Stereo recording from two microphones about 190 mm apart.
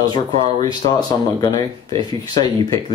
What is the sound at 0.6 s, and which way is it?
Speech, 20° left (ahead or behind).